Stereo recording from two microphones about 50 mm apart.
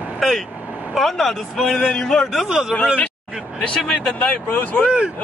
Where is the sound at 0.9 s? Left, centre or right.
Centre.